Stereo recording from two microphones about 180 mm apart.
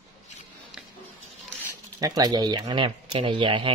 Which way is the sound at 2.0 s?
20° right (ahead or behind).